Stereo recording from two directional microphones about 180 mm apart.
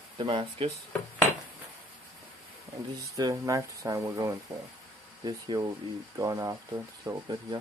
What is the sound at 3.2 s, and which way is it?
Speech, 20° right (ahead or behind).